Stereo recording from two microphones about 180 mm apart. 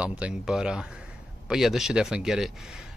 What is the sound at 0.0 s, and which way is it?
Speech, 5° right (ahead or behind).